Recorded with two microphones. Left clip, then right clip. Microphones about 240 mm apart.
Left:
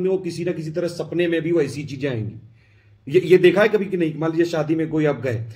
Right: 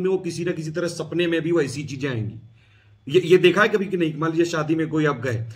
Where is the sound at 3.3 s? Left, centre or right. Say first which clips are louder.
Left 2 dB; centre.